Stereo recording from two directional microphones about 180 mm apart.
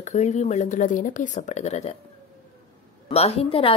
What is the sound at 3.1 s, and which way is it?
Speech, 35° left (ahead or behind).